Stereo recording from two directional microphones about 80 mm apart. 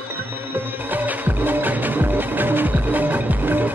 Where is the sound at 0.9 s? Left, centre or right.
Right.